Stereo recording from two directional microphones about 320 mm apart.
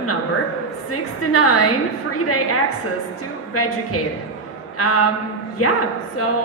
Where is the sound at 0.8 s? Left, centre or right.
Left.